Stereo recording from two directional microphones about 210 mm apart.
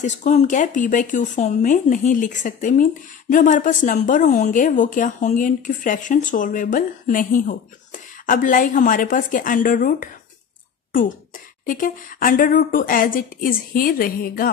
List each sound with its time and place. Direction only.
0.0 s speech: 35° left (ahead or behind)